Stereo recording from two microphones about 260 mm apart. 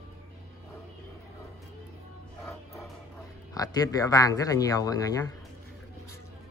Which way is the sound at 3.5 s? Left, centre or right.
Centre.